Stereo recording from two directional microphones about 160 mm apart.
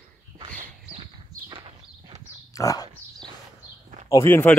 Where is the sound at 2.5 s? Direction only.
20° left (ahead or behind).